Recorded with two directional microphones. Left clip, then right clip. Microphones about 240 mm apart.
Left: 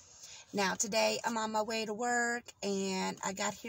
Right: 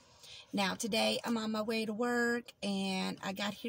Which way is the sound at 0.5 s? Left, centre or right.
Centre.